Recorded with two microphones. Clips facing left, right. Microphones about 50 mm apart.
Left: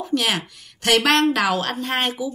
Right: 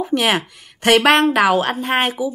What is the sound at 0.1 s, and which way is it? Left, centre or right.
Speech, right.